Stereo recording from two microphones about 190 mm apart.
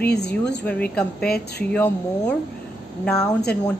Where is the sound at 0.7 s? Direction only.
5° left (ahead or behind).